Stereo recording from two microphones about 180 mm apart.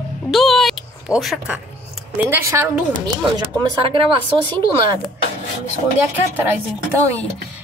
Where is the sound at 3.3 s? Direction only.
25° right (ahead or behind).